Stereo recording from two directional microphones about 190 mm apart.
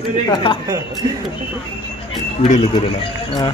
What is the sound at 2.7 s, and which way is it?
Speech, 25° left (ahead or behind).